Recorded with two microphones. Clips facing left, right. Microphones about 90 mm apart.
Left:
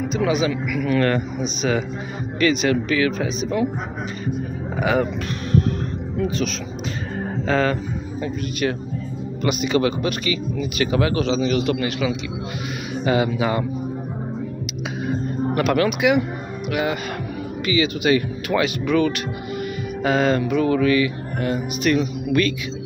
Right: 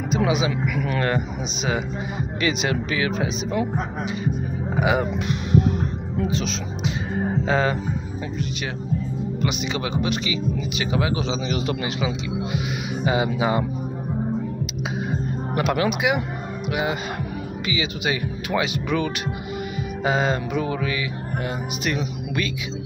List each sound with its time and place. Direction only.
0.2 s speech: 20° right (ahead or behind)
2.4 s speech: 25° right (ahead or behind)
4.7 s music: 15° right (ahead or behind)
6.3 s speech: 25° right (ahead or behind)
7.4 s music: 15° right (ahead or behind)
9.7 s music: 15° right (ahead or behind)
12.5 s speech: 15° right (ahead or behind)
15.6 s speech: 20° right (ahead or behind)
17.6 s music: 15° right (ahead or behind)